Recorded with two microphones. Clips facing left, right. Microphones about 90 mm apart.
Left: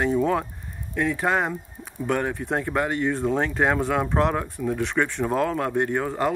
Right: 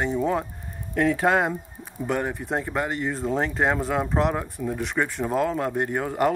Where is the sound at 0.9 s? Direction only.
25° right (ahead or behind).